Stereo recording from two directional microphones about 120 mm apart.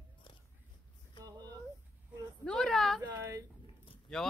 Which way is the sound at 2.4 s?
5° left (ahead or behind).